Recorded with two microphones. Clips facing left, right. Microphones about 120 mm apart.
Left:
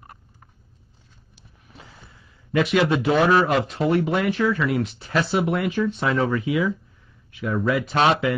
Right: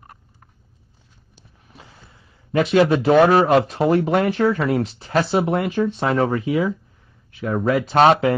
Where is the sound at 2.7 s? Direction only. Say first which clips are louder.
Right 6 dB; 35° right (ahead or behind).